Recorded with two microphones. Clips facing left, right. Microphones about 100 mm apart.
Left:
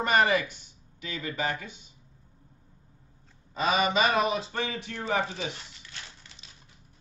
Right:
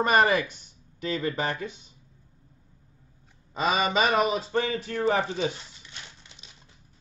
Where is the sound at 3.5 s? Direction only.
35° right (ahead or behind).